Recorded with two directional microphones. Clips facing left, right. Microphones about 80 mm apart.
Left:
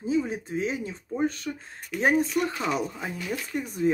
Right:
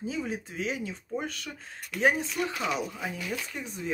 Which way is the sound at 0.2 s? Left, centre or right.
Left.